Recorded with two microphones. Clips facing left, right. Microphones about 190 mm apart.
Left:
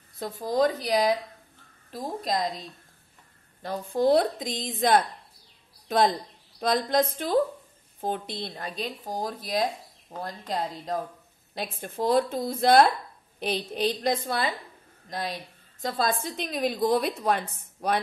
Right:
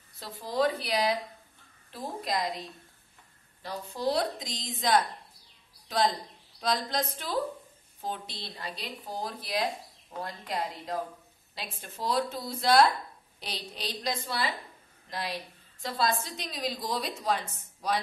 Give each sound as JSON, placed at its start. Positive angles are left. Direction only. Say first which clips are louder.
{"t": 0.2, "sound": "speech", "louder": "left 4 dB", "side_deg": 45}
{"t": 3.6, "sound": "a woman's voice", "louder": "left 8 dB", "side_deg": 50}
{"t": 11.5, "sound": "speech", "louder": "left 9 dB", "side_deg": 50}
{"t": 15.8, "sound": "a woman's voice", "louder": "left 3 dB", "side_deg": 50}